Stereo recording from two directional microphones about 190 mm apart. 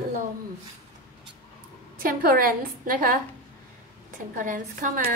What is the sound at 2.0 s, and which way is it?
Speech, 50° right (ahead or behind).